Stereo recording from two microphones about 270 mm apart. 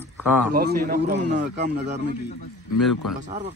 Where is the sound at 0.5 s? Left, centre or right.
Right.